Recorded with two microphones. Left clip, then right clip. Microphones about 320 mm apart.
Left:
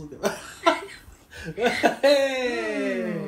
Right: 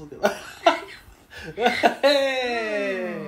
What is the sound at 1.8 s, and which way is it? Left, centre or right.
Speech, right.